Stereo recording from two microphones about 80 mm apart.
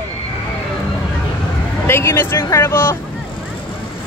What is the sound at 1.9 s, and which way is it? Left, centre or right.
Speech, left.